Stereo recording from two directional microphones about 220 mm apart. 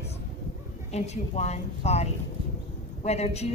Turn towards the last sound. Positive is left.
turn(degrees=30)  # may be behind; listen again after turning